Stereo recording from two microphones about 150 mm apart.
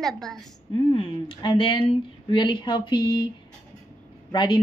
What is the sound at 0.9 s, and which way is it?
Speech, 35° left (ahead or behind).